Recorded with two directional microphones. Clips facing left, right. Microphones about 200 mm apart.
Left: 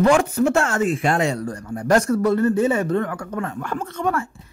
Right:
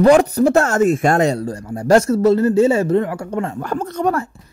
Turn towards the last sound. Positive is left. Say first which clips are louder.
# right 4 dB
turn(degrees=-40)  # may be behind; listen again after turning